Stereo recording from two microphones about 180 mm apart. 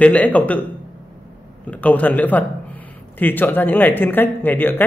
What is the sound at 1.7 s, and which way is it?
Speech, 10° left (ahead or behind).